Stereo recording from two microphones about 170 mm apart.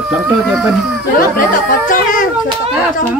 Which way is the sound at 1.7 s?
50° left (ahead or behind).